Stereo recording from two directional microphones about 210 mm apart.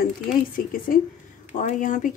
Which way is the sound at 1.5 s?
35° left (ahead or behind).